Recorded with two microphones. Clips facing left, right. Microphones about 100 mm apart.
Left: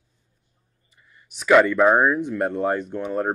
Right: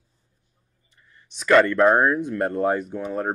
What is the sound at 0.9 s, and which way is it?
Speech, 5° left (ahead or behind).